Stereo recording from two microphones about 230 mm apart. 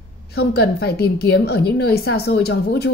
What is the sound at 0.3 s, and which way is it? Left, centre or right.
A woman's voice, left.